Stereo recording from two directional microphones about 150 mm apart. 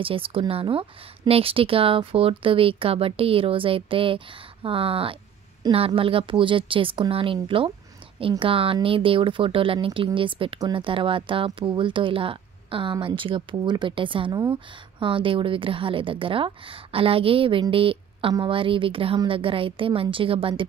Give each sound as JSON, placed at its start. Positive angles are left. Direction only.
{"t": 0.0, "sound": "speech", "side_deg": -35}